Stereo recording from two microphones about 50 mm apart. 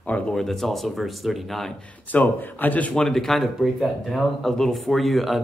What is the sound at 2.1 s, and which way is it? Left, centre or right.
Speech, left.